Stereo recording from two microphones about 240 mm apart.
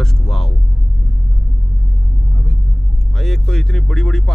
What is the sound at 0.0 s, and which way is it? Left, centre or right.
Hum, centre.